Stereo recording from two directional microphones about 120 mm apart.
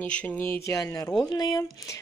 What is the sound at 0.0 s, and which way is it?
Speech, 10° left (ahead or behind).